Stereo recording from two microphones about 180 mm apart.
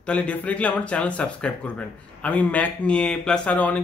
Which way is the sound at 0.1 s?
5° left (ahead or behind).